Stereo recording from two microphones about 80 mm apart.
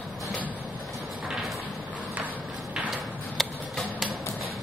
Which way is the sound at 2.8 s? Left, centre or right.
Centre.